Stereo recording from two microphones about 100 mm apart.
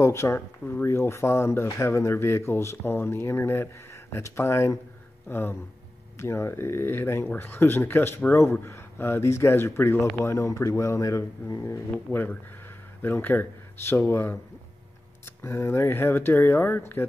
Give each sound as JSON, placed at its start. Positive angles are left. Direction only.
{"t": 0.0, "sound": "speech", "side_deg": 25}
{"t": 12.1, "sound": "speech", "side_deg": 20}